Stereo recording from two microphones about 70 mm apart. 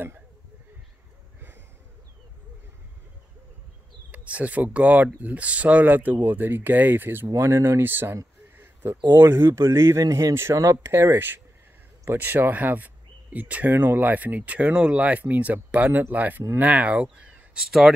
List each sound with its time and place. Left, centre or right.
4.1 s speech: centre
7.3 s speech: right; by 17.9 s centre